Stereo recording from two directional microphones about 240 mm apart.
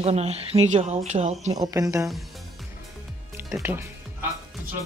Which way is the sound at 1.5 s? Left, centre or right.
Centre.